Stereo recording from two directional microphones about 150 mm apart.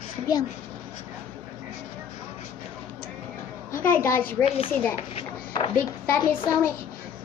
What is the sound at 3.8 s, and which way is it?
Speech, 15° left (ahead or behind).